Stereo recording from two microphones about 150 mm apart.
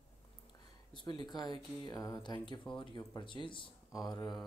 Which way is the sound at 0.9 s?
30° left (ahead or behind).